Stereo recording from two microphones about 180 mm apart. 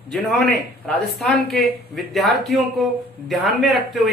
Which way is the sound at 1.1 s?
Centre (ahead or behind).